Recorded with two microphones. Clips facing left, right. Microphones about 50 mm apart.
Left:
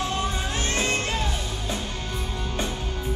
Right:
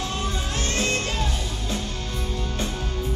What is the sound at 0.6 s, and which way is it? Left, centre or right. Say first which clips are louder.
Music: right 1 dB; left.